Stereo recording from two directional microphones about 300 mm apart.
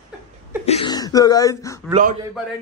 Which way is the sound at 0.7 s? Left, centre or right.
Centre.